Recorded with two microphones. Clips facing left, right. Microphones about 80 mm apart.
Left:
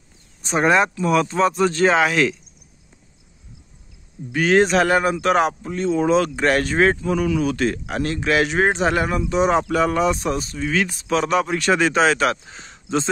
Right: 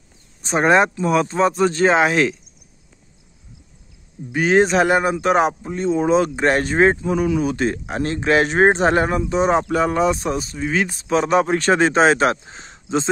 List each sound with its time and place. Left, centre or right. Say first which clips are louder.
0.4 s speech: right 2 dB; right
4.3 s speech: right 1 dB; centre